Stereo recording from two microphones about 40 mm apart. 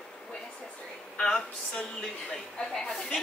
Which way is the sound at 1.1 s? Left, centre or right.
Centre.